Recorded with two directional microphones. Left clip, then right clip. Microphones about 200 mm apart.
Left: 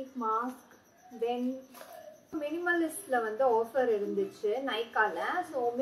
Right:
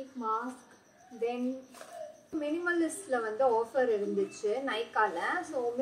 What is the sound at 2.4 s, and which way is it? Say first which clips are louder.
A woman's voice: even; 5° right (ahead or behind).